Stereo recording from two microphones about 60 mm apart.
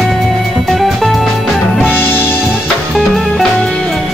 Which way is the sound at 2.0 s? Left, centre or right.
Left.